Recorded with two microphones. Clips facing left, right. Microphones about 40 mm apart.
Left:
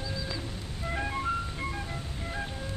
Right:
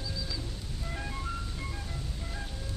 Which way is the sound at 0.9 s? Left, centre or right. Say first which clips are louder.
Left 8 dB; left.